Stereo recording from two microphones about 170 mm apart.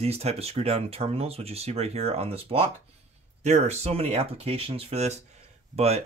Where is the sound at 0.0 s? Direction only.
35° right (ahead or behind).